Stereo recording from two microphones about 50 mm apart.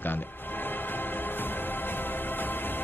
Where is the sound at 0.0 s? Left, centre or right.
Left.